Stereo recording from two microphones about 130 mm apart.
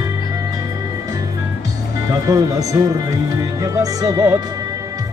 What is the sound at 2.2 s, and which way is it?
Music, 25° right (ahead or behind).